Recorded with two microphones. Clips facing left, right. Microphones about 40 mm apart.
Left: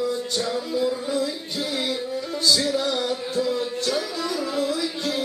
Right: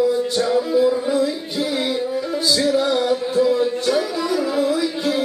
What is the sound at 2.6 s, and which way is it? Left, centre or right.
Music, centre.